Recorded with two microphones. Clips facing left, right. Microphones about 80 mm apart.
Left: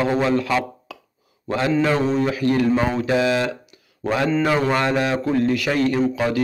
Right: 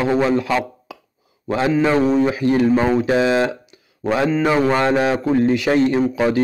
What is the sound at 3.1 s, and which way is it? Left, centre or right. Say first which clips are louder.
A man's voice: right 3 dB; right.